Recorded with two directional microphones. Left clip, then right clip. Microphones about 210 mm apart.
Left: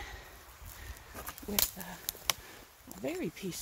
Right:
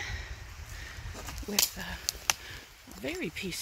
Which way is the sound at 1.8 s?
5° left (ahead or behind).